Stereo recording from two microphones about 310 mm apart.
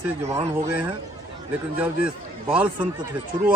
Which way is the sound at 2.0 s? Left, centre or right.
Centre.